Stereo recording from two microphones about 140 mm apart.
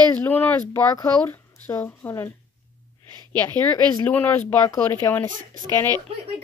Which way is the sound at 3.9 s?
15° left (ahead or behind).